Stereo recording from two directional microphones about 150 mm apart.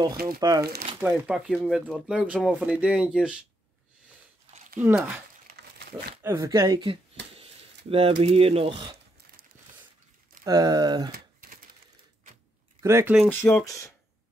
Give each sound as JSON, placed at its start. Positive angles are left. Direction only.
{"t": 0.4, "sound": "speech", "side_deg": -25}
{"t": 1.0, "sound": "speech", "side_deg": -5}
{"t": 4.7, "sound": "speech", "side_deg": -10}
{"t": 5.8, "sound": "crumpling", "side_deg": -90}
{"t": 6.2, "sound": "speech", "side_deg": -20}
{"t": 6.8, "sound": "speech", "side_deg": -35}
{"t": 10.4, "sound": "speech", "side_deg": -25}
{"t": 11.1, "sound": "typing", "side_deg": -75}
{"t": 12.8, "sound": "speech", "side_deg": -20}
{"t": 13.3, "sound": "speech", "side_deg": 10}